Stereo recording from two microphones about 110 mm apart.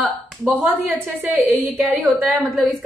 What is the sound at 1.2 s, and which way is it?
A woman's voice, 15° right (ahead or behind).